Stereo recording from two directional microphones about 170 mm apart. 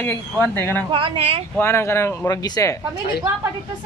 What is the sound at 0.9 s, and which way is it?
Speech, 30° right (ahead or behind).